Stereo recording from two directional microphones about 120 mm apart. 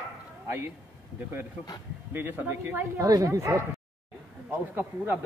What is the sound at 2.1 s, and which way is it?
Speech, 15° right (ahead or behind).